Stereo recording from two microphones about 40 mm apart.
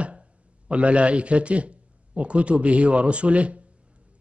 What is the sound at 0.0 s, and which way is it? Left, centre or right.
A man's voice, right.